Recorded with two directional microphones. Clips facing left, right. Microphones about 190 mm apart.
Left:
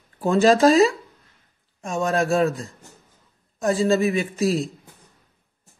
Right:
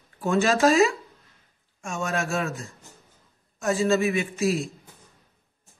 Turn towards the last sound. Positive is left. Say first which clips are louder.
# left 3 dB
turn(degrees=35)  # may be behind; listen again after turning